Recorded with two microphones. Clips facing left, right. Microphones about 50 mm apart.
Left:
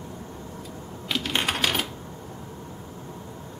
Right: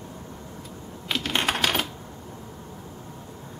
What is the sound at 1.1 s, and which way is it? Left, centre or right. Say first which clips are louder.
Typing: right 1 dB; centre.